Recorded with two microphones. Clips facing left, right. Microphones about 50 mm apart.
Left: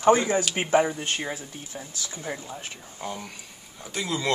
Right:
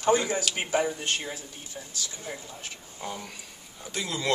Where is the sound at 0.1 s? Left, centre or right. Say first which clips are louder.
Left 3 dB; left.